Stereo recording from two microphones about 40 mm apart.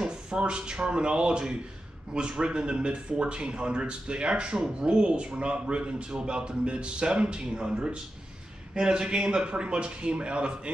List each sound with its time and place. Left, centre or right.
0.0 s a man's voice: right